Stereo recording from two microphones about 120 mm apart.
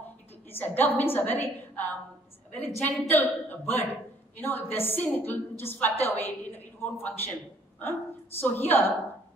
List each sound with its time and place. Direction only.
0.5 s a woman's voice: 15° left (ahead or behind)
8.4 s a woman's voice: 15° left (ahead or behind)